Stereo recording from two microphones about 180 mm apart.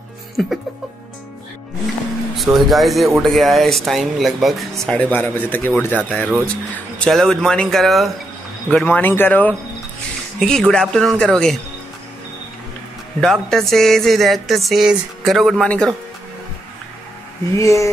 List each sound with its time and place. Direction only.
0.4 s speech: centre (ahead or behind)
2.3 s speech: centre (ahead or behind)
13.2 s speech: centre (ahead or behind)
17.6 s speech: 15° left (ahead or behind)